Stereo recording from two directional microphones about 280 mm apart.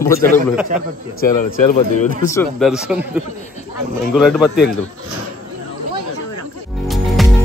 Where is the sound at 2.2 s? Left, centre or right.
Centre.